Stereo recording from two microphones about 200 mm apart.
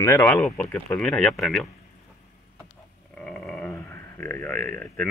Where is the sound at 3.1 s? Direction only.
5° left (ahead or behind).